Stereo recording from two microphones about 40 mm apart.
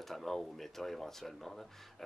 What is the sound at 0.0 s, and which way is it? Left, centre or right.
Speech, centre.